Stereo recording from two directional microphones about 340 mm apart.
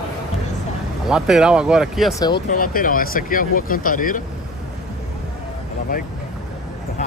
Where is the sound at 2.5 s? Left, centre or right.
Left.